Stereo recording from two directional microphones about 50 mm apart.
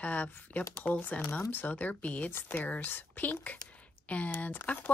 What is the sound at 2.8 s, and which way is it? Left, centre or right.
Speech, left.